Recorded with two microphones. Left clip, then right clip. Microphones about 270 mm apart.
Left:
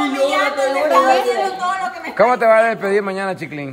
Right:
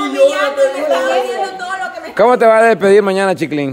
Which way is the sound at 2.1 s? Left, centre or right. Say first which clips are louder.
Right 4 dB; right.